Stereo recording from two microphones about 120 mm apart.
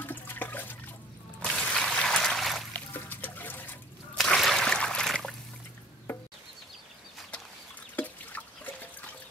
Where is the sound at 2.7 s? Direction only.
15° left (ahead or behind).